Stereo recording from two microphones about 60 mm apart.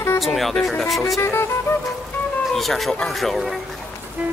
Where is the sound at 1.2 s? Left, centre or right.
Left.